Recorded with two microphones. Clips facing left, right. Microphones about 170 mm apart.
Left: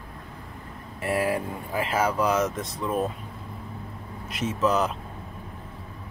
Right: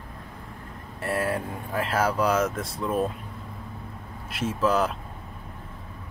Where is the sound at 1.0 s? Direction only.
5° left (ahead or behind).